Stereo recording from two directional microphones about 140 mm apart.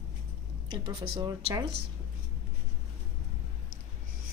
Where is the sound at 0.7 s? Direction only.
30° right (ahead or behind).